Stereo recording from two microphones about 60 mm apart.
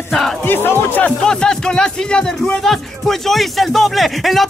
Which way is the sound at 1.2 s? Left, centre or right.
Centre.